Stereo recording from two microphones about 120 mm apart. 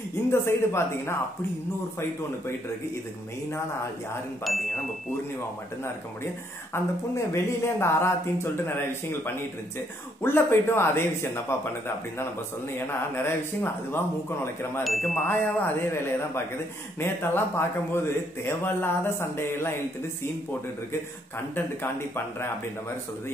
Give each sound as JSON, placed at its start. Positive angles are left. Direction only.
{"t": 0.3, "sound": "speech", "side_deg": 20}
{"t": 4.5, "sound": "chime", "side_deg": 0}
{"t": 6.7, "sound": "speech", "side_deg": 20}
{"t": 12.7, "sound": "speech", "side_deg": 20}
{"t": 14.8, "sound": "chime", "side_deg": 0}
{"t": 15.2, "sound": "speech", "side_deg": 20}
{"t": 21.5, "sound": "speech", "side_deg": 20}